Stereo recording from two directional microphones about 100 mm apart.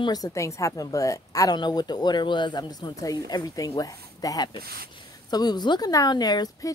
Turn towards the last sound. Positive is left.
turn(degrees=40)  # may be behind; listen again after turning